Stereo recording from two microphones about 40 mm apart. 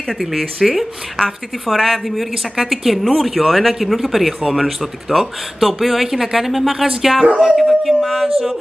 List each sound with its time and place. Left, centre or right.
0.2 s a woman's voice: centre